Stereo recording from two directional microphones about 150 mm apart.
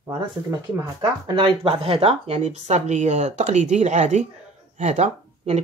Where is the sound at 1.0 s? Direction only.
30° right (ahead or behind).